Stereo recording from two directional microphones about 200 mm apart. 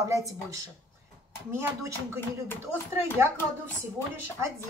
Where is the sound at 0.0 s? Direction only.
15° right (ahead or behind).